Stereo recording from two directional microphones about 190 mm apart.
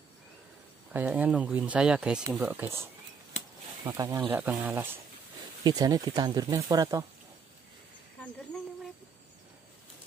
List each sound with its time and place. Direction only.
0.9 s speech: 10° right (ahead or behind)
5.6 s speech: 20° right (ahead or behind)